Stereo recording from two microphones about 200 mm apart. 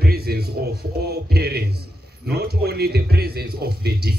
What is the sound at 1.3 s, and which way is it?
A man's voice, 50° right (ahead or behind).